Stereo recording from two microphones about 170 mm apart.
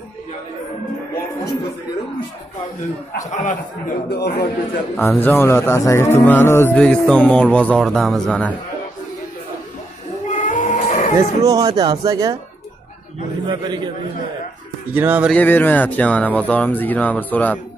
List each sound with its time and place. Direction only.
3.2 s a man's voice: 45° left (ahead or behind)
4.1 s a man's voice: 65° left (ahead or behind)
5.0 s speech: 10° left (ahead or behind)
10.3 s printer: 50° left (ahead or behind)
11.1 s speech: 20° right (ahead or behind)
13.5 s speech: 25° right (ahead or behind)
15.0 s speech: 10° right (ahead or behind)
15.3 s speech: 10° left (ahead or behind)